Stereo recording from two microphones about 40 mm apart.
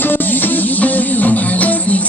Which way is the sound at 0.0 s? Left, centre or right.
Left.